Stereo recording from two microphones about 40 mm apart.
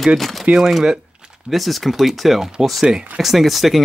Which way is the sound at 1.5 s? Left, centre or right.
Centre.